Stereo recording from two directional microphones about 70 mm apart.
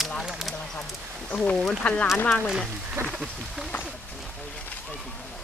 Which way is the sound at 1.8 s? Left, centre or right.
Centre.